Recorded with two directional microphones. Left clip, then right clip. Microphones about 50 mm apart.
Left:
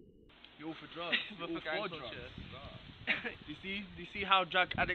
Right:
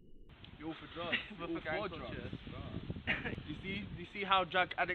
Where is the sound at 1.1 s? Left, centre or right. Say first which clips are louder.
Left 3 dB; left.